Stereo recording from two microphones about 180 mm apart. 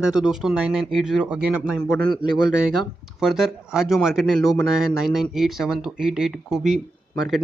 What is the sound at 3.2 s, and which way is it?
Speech, centre (ahead or behind).